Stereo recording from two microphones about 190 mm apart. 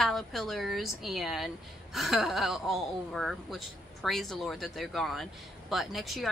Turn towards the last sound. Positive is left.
turn(degrees=0)  # may be behind; listen again after turning